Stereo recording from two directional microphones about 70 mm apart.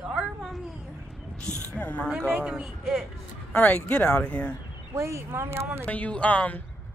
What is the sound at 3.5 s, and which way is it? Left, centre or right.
Speech, centre.